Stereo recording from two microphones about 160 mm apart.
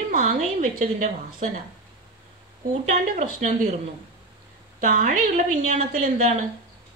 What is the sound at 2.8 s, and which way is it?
Speech, 50° right (ahead or behind).